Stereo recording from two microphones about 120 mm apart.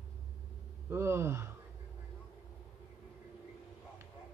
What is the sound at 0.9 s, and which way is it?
Speech, 20° right (ahead or behind).